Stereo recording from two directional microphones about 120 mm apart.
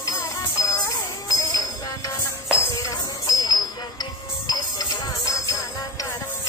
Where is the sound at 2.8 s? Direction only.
35° left (ahead or behind).